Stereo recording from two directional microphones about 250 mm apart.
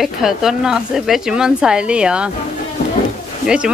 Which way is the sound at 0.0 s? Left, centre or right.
Centre.